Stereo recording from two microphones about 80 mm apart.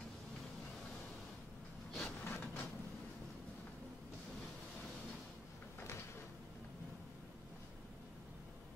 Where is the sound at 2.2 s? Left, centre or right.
Left.